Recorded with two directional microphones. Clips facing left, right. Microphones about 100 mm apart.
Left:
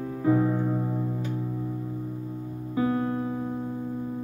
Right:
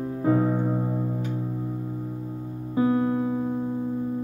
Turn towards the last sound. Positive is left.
turn(degrees=-20)  # may be behind; listen again after turning